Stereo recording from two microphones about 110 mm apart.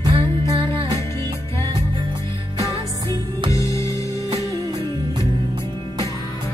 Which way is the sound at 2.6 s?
30° right (ahead or behind).